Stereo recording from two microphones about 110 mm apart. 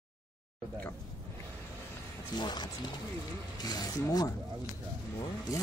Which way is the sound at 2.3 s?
40° left (ahead or behind).